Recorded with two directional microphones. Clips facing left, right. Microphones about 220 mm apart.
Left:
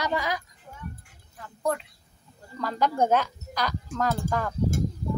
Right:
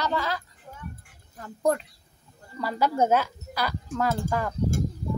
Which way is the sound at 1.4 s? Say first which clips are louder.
Right 4 dB; 40° right (ahead or behind).